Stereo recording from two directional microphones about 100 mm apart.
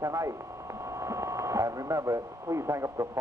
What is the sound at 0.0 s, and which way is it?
A man's voice, 30° right (ahead or behind).